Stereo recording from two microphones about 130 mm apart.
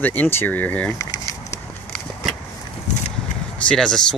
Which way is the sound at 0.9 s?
25° left (ahead or behind).